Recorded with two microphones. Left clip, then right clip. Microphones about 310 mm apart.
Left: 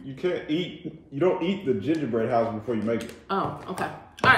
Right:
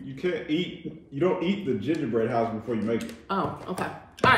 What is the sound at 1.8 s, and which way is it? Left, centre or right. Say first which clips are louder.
A woman's voice: even; centre.